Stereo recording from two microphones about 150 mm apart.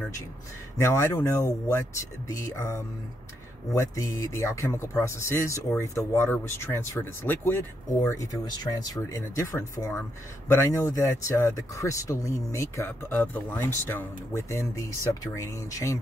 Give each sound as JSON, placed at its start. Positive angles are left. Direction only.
{"t": 0.7, "sound": "speech", "side_deg": 20}